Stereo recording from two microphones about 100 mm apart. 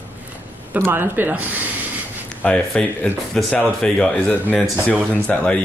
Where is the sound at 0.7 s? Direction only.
20° right (ahead or behind).